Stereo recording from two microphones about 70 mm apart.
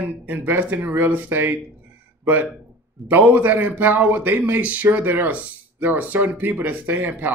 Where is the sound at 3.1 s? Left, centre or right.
Right.